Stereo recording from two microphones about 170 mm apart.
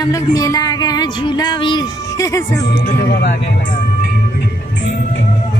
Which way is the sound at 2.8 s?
60° left (ahead or behind).